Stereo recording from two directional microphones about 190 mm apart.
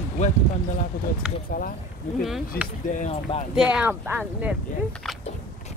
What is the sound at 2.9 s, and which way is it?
Speech, 40° left (ahead or behind).